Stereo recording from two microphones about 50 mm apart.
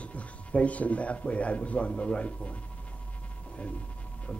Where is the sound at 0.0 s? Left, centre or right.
Left.